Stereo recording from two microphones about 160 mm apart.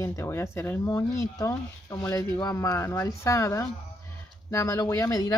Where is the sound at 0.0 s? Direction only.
15° left (ahead or behind).